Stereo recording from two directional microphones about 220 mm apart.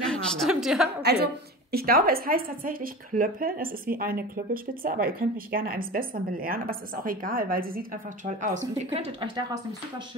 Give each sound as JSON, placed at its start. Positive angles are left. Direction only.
{"t": 0.0, "sound": "a woman's voice", "side_deg": 0}
{"t": 0.8, "sound": "a woman's voice", "side_deg": -50}
{"t": 8.7, "sound": "a woman's voice", "side_deg": -25}